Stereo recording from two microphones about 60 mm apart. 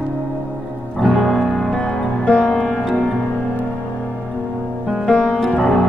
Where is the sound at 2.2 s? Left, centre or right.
Centre.